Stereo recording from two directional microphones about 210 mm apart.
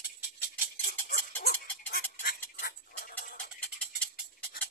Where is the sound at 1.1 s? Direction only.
50° left (ahead or behind).